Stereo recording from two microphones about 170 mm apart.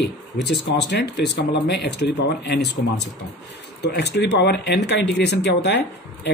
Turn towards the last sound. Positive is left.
turn(degrees=85)